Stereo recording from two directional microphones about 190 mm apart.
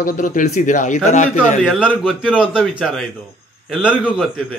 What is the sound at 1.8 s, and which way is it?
A man's voice, 5° right (ahead or behind).